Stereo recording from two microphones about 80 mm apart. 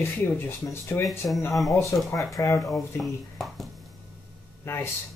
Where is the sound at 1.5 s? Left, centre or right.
Centre.